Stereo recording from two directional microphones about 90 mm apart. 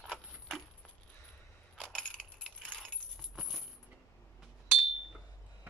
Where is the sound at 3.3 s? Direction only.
Centre (ahead or behind).